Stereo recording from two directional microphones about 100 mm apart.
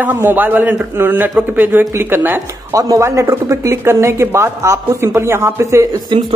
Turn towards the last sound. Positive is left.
turn(degrees=-50)  # may be behind; listen again after turning